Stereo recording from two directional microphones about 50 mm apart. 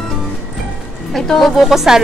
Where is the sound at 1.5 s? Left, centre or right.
Centre.